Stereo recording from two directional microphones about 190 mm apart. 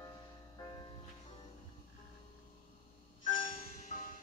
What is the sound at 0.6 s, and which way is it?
Music, 20° left (ahead or behind).